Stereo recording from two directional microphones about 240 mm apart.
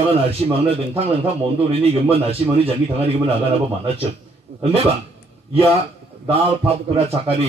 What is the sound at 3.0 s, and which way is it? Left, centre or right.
Speech, right.